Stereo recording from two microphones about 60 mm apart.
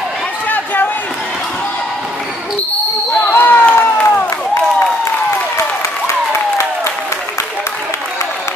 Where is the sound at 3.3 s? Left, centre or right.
Left.